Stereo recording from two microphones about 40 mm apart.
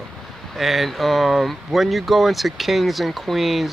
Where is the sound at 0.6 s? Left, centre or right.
Centre.